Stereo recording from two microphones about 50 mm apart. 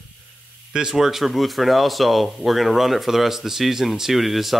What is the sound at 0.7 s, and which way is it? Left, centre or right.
Speech, centre.